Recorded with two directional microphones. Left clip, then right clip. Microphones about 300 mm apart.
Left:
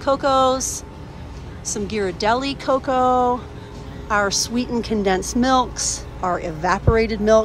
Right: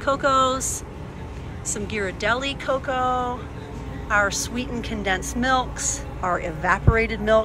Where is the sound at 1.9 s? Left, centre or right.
Centre.